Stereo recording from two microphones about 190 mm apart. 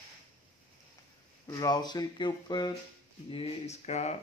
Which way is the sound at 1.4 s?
20° left (ahead or behind).